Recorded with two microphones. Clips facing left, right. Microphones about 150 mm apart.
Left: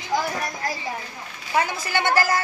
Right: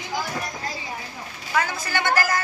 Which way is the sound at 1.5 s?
25° left (ahead or behind).